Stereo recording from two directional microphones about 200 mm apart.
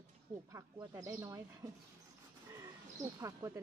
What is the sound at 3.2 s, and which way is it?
Speech, 15° right (ahead or behind).